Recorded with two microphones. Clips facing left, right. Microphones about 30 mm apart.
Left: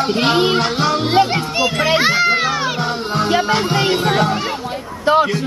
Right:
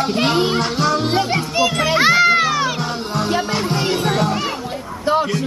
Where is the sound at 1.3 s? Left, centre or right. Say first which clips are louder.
Even; centre.